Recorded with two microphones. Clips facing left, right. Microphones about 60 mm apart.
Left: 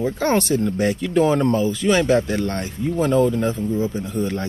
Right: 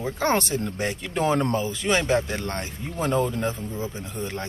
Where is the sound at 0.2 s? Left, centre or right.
Right.